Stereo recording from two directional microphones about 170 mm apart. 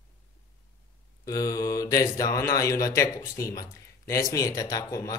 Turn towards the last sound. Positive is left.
turn(degrees=20)  # may be behind; listen again after turning